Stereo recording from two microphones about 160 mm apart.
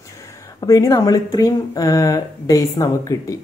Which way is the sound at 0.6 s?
20° left (ahead or behind).